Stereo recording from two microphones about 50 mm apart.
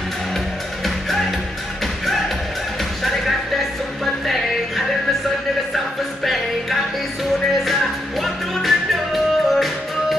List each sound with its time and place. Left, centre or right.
3.0 s music: centre
6.2 s music: centre